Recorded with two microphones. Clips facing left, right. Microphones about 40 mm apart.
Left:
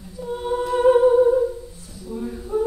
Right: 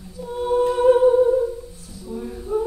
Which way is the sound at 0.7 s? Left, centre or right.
Centre.